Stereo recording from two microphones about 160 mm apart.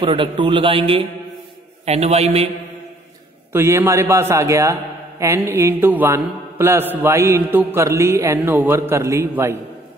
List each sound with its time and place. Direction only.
0.0 s a man's voice: 30° right (ahead or behind)
3.5 s mantra: 15° right (ahead or behind)